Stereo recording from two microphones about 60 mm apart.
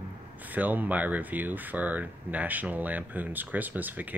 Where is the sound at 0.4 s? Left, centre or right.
Right.